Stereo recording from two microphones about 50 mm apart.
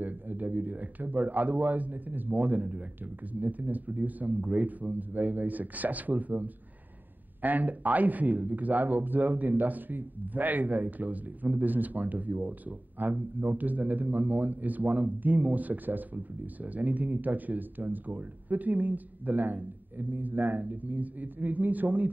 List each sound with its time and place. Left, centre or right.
0.0 s speech: right